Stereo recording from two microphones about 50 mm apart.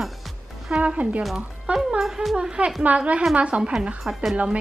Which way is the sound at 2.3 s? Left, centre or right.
Centre.